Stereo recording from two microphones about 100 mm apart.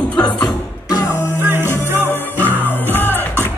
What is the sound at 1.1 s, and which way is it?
Music, 20° left (ahead or behind).